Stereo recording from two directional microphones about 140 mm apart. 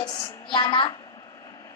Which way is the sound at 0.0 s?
30° left (ahead or behind).